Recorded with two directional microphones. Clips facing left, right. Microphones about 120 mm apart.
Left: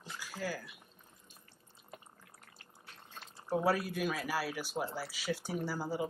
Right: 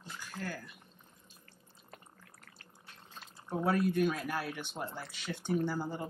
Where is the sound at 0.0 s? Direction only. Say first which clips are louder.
Left 2 dB; 5° left (ahead or behind).